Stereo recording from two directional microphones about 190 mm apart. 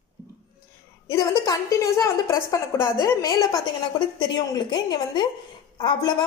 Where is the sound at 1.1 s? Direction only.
15° left (ahead or behind).